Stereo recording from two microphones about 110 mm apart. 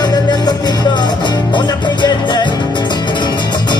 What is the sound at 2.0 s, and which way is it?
Music, 40° left (ahead or behind).